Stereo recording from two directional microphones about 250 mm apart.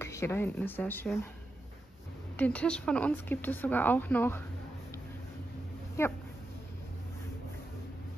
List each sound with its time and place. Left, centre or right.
0.0 s speech: centre
2.3 s speech: centre
6.0 s speech: centre